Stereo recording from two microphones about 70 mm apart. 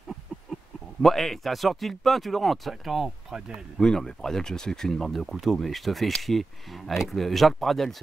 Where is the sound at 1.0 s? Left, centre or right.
Centre.